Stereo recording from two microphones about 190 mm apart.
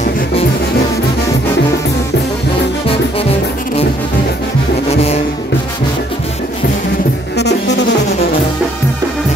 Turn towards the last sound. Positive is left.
turn(degrees=65)  # may be behind; listen again after turning